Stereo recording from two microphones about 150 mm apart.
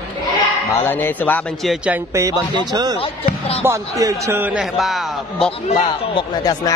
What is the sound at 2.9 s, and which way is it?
Speech, 40° left (ahead or behind).